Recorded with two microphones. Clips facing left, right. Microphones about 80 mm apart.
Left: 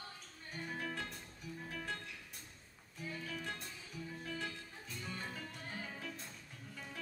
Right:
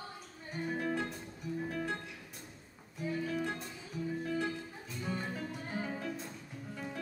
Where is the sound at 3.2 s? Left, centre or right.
Centre.